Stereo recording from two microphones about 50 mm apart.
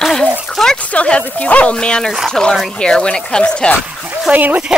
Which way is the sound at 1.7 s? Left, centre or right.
Centre.